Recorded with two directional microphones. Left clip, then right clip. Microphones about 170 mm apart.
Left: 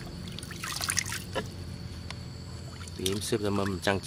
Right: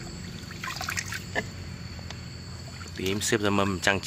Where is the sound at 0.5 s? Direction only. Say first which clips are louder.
Right 1 dB; 30° left (ahead or behind).